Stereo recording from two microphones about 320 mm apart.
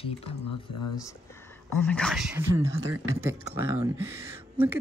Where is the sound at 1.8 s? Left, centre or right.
Centre.